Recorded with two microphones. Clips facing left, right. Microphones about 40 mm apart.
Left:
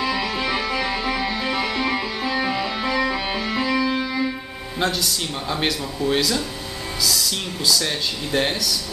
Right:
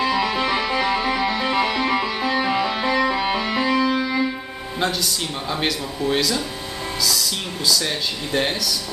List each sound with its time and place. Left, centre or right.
0.0 s music: centre
4.7 s speech: centre